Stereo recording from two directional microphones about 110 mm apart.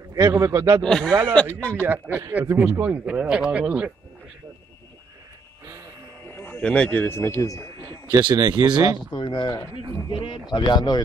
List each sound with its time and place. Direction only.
0.1 s a man's voice: 30° right (ahead or behind)
0.8 s speech: 5° left (ahead or behind)
1.9 s speech: 15° right (ahead or behind)
6.3 s speech: 15° left (ahead or behind)
8.4 s speech: 40° right (ahead or behind)
9.1 s speech: 45° left (ahead or behind)